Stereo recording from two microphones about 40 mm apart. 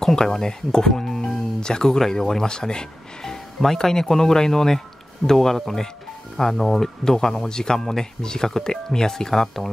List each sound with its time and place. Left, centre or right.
0.0 s speech: centre